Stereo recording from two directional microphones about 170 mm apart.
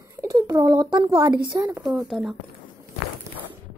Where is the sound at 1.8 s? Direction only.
Centre (ahead or behind).